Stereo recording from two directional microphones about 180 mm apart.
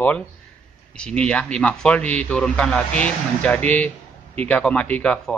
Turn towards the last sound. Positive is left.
turn(degrees=5)  # may be behind; listen again after turning